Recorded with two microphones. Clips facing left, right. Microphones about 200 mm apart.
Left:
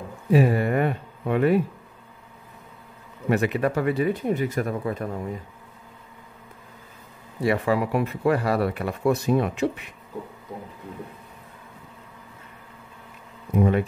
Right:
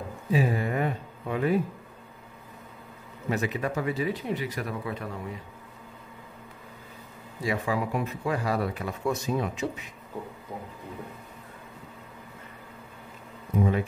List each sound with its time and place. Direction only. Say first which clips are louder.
0.3 s speech: left 6 dB; 60° left (ahead or behind)
3.3 s speech: left 6 dB; 65° left (ahead or behind); by 5.4 s 45° left (ahead or behind)
7.4 s speech: left 6 dB; 65° left (ahead or behind)
13.6 s speech: left 4 dB; 65° left (ahead or behind)